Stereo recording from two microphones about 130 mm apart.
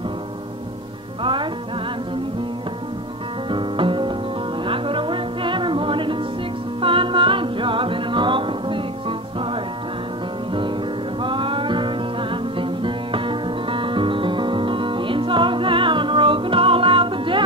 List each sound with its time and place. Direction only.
1.2 s music: 40° right (ahead or behind)
3.4 s music: 40° right (ahead or behind)
11.2 s music: 40° right (ahead or behind)